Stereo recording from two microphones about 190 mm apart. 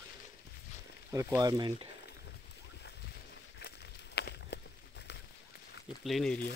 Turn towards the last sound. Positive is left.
turn(degrees=0)  # may be behind; listen again after turning